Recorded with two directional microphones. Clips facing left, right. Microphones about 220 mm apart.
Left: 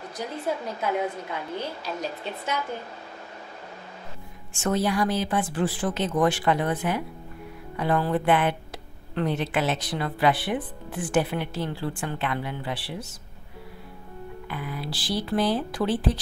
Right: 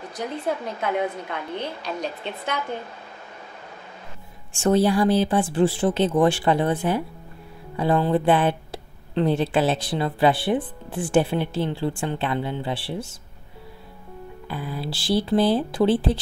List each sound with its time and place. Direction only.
0.8 s a woman's voice: 5° left (ahead or behind)
4.6 s speech: 30° right (ahead or behind)
14.5 s speech: 30° right (ahead or behind)